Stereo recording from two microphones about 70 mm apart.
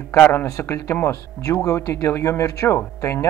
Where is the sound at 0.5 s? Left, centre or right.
Left.